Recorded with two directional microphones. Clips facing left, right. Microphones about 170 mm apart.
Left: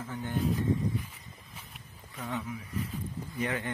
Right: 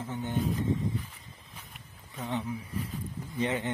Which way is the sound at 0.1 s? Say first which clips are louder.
Right 1 dB; 20° right (ahead or behind).